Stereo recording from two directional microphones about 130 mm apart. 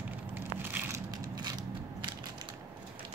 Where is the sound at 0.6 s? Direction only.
15° right (ahead or behind).